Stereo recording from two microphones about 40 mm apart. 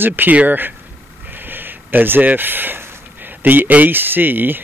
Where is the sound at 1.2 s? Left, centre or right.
Right.